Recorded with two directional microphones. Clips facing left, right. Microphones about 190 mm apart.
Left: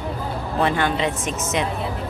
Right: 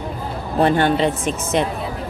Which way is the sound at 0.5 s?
35° right (ahead or behind).